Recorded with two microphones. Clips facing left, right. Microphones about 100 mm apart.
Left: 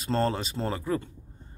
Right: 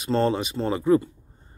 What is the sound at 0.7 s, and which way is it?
Speech, 20° right (ahead or behind).